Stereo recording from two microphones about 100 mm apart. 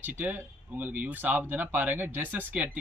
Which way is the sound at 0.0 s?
15° right (ahead or behind).